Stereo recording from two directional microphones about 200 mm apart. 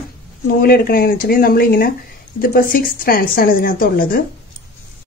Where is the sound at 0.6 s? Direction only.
50° left (ahead or behind).